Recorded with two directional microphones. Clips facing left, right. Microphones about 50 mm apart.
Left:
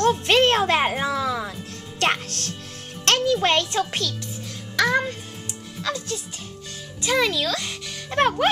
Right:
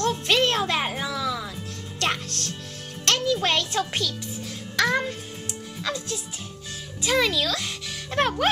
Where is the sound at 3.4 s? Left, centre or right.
Centre.